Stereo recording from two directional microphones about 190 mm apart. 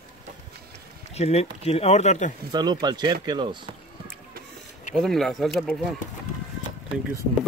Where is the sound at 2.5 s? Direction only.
20° right (ahead or behind).